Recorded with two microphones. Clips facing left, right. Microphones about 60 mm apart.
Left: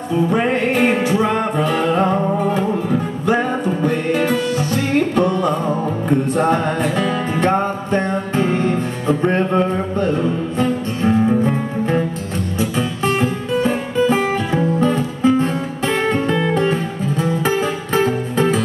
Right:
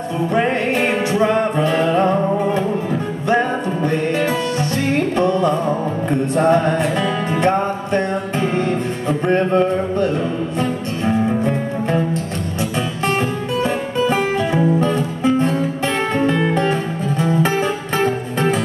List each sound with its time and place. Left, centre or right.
0.3 s music: centre
7.5 s music: centre
8.4 s music: centre
11.1 s music: centre
14.0 s music: centre
14.8 s music: centre
16.2 s music: centre
16.5 s music: centre